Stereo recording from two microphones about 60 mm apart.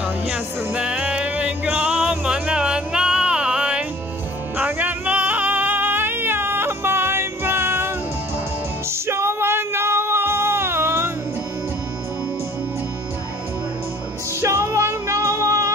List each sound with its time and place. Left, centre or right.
0.7 s music: centre
4.6 s music: right
8.9 s music: right
14.4 s music: right